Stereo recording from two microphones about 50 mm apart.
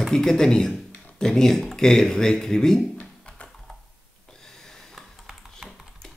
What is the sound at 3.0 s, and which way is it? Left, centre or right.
Computer keyboard, left.